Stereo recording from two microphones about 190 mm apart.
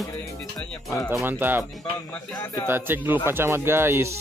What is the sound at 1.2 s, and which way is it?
Speech, 10° right (ahead or behind).